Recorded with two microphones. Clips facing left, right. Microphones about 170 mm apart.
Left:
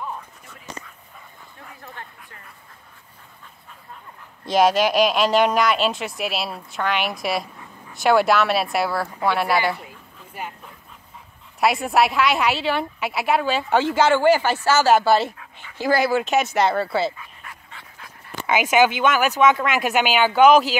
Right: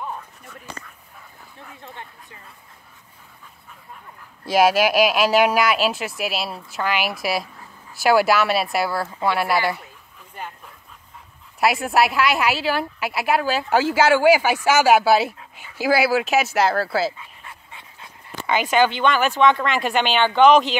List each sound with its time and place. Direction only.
4.5 s a woman's voice: 5° right (ahead or behind)
10.4 s dog: 10° left (ahead or behind)
11.6 s a woman's voice: centre (ahead or behind)
17.2 s dog: 25° right (ahead or behind)
18.5 s speech: 10° left (ahead or behind)